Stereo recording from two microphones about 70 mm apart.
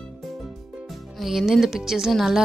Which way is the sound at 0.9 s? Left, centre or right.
Centre.